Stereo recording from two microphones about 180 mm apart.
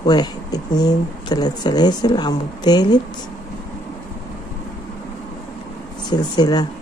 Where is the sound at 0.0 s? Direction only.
20° left (ahead or behind).